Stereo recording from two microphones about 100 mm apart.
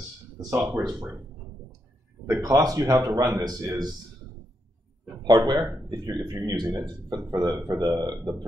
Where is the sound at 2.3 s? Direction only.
40° right (ahead or behind).